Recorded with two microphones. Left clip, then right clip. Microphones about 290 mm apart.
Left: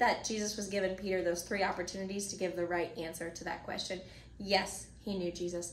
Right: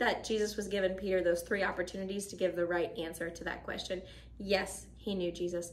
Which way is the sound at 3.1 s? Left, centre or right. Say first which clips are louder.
Right 2 dB; centre.